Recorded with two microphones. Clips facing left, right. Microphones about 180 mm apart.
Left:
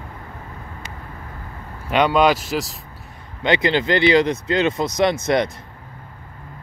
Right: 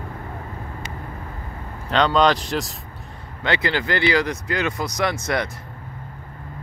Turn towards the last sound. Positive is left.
turn(degrees=20)  # may be behind; listen again after turning